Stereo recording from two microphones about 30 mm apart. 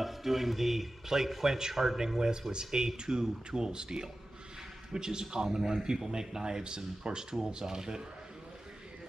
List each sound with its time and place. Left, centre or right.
0.0 s speech: centre; by 8.0 s right